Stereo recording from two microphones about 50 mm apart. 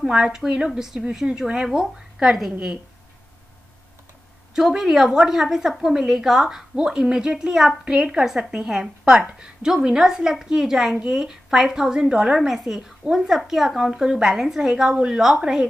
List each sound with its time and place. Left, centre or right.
0.1 s a woman's voice: centre
4.6 s a woman's voice: centre
7.8 s a woman's voice: right
12.4 s a woman's voice: centre